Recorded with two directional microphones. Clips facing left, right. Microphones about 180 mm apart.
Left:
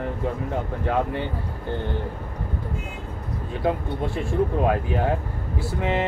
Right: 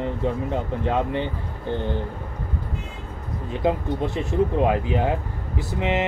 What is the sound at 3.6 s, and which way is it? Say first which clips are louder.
Speech: right 2 dB; 20° right (ahead or behind).